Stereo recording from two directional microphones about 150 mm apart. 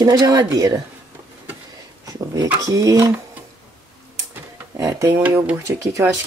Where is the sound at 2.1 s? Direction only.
25° right (ahead or behind).